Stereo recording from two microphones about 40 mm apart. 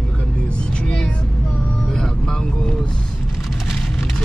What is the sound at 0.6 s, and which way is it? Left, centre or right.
Music, left.